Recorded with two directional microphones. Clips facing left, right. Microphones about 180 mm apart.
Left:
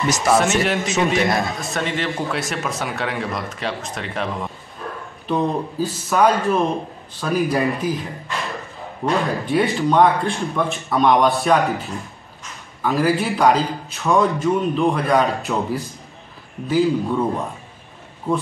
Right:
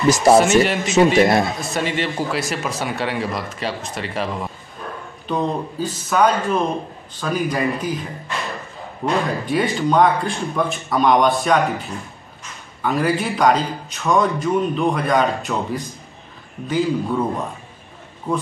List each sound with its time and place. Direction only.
0.1 s speech: 35° right (ahead or behind)
0.4 s speech: centre (ahead or behind)
16.6 s speech: centre (ahead or behind)